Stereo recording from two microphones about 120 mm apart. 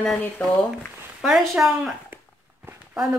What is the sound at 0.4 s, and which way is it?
Speech, 15° left (ahead or behind).